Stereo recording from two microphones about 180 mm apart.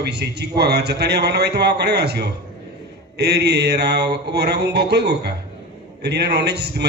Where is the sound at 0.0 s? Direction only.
65° right (ahead or behind).